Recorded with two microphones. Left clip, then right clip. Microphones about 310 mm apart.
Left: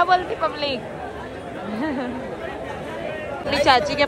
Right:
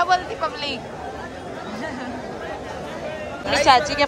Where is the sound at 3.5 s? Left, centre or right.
Centre.